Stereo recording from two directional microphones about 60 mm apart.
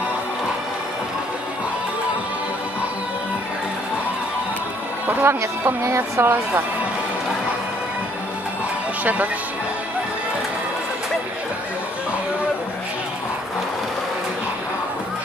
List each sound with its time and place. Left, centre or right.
5.0 s speech: right
5.8 s speech: right